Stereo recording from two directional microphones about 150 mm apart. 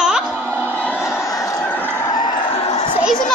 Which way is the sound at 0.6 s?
10° left (ahead or behind).